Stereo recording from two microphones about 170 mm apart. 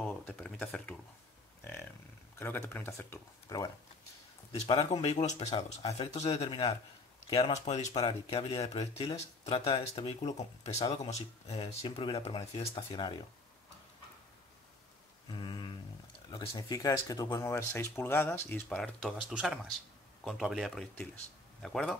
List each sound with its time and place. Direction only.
0.0 s speech: 5° left (ahead or behind)
2.3 s speech: 15° left (ahead or behind)
4.6 s speech: 30° left (ahead or behind)
15.2 s a sound: 25° left (ahead or behind)
16.3 s speech: 25° left (ahead or behind)
18.9 s speech: centre (ahead or behind)